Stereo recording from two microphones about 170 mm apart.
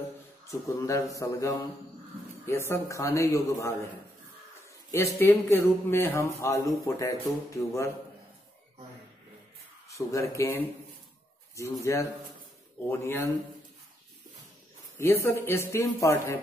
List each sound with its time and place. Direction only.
0.7 s a man's voice: 20° left (ahead or behind)
4.9 s speech: 15° left (ahead or behind)
9.8 s speech: 20° left (ahead or behind)
15.0 s speech: 15° left (ahead or behind)